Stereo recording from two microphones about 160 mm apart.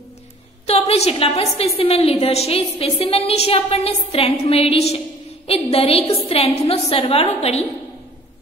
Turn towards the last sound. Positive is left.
turn(degrees=40)  # may be behind; listen again after turning